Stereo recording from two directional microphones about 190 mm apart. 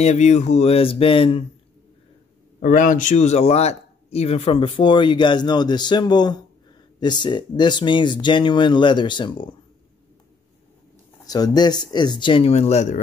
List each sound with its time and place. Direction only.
0.0 s speech: 35° left (ahead or behind)
2.6 s speech: 45° left (ahead or behind); by 9.5 s 25° left (ahead or behind)
11.2 s speech: 20° left (ahead or behind); by 13.0 s 40° left (ahead or behind)